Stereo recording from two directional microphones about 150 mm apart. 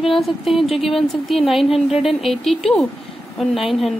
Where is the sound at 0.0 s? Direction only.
Centre (ahead or behind).